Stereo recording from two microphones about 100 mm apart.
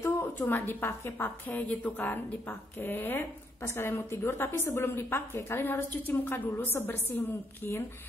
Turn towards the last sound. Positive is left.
turn(degrees=20)  # may be behind; listen again after turning